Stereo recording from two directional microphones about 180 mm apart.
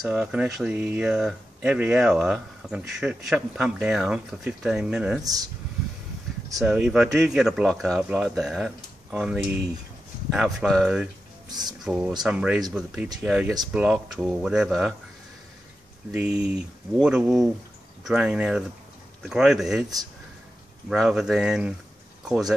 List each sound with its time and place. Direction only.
0.1 s speech: 5° right (ahead or behind)
5.2 s speech: 20° right (ahead or behind)
6.6 s speech: 5° right (ahead or behind)
11.4 s speech: 20° right (ahead or behind)
11.8 s speech: 5° right (ahead or behind)
16.1 s speech: 5° right (ahead or behind)
20.9 s speech: 5° right (ahead or behind)